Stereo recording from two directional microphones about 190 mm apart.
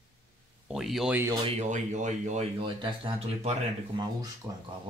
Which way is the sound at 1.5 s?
40° right (ahead or behind).